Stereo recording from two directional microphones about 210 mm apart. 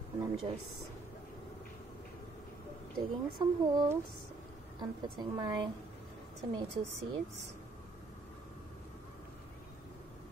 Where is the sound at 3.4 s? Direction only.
25° right (ahead or behind).